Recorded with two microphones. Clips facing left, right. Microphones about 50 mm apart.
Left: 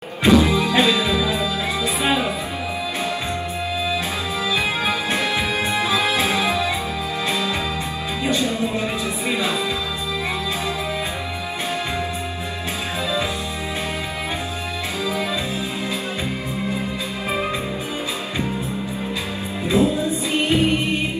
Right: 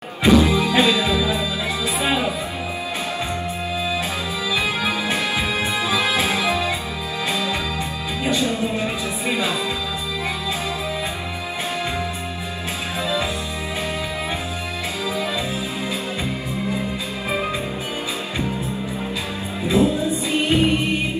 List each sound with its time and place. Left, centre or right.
0.6 s music: left
4.6 s music: left
5.9 s music: right
6.2 s music: left
8.3 s music: left